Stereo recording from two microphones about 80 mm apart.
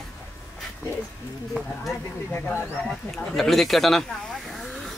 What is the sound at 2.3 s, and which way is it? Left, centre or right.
Speech, left.